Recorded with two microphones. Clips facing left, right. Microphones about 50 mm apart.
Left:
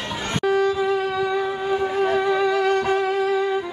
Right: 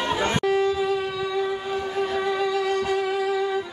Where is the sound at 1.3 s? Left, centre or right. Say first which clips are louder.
Left 3 dB; left.